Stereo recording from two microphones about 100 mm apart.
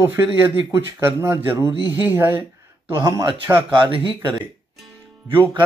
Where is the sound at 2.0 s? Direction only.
20° right (ahead or behind).